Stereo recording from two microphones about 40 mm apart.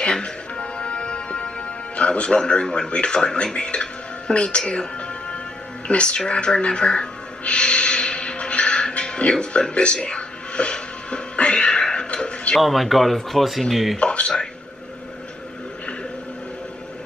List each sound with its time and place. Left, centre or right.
0.0 s music: left
2.0 s speech: left
5.9 s music: left
12.5 s speech: centre
13.9 s speech: left